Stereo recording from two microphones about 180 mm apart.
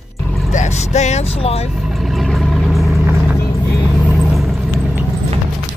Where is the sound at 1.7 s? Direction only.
Centre (ahead or behind).